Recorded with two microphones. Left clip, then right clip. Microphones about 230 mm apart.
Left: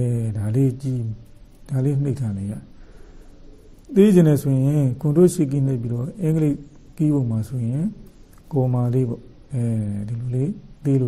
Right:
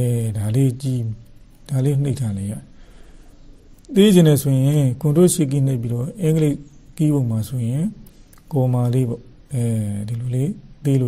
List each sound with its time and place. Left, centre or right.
0.0 s speech: right
3.8 s speech: right